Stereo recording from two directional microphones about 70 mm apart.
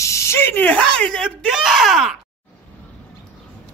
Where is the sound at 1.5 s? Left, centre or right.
Centre.